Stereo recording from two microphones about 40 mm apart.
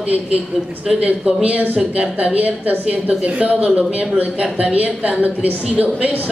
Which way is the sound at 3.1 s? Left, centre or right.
Right.